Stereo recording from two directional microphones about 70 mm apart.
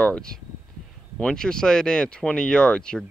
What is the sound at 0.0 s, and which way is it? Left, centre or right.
Speech, centre.